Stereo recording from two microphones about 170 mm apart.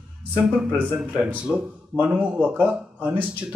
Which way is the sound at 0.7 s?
10° right (ahead or behind).